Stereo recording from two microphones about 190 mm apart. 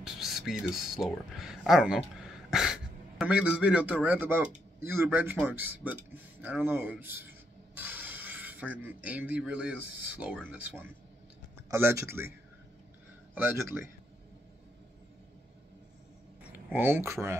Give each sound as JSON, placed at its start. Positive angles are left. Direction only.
{"t": 0.0, "sound": "speech", "side_deg": 0}
{"t": 13.3, "sound": "speech", "side_deg": -10}
{"t": 16.6, "sound": "speech", "side_deg": -10}